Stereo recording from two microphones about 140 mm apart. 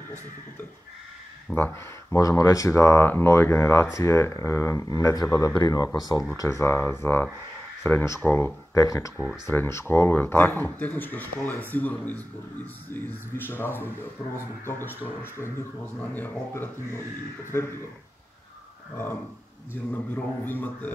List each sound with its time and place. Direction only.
1.5 s speech: 15° left (ahead or behind)
9.1 s speech: 5° right (ahead or behind)
9.5 s speech: 15° left (ahead or behind)
15.0 s speech: 15° left (ahead or behind)
19.7 s speech: 15° left (ahead or behind)